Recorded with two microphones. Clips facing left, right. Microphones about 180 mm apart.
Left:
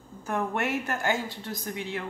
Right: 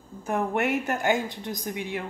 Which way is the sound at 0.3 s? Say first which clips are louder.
Right 3 dB; 15° right (ahead or behind).